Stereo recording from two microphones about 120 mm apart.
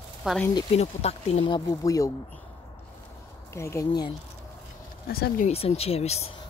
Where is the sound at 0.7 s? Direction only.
60° left (ahead or behind).